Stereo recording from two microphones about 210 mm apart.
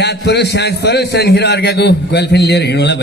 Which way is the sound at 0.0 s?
55° left (ahead or behind).